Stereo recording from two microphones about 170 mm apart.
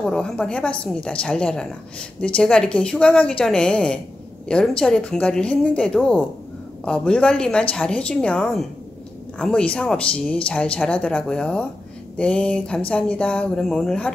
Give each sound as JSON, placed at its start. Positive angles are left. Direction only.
{"t": 0.0, "sound": "a woman's voice", "side_deg": 5}
{"t": 12.2, "sound": "a sound", "side_deg": 5}
{"t": 12.9, "sound": "a woman's voice", "side_deg": 5}